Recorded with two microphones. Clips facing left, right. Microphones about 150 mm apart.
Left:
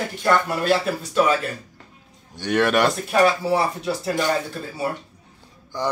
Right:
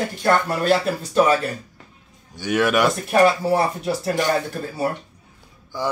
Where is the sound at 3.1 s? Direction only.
50° right (ahead or behind).